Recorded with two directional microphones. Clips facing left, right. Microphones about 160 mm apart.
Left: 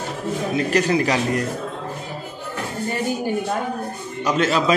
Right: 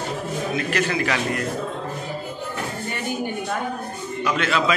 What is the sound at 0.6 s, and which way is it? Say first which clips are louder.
Speech: left 6 dB; 35° left (ahead or behind).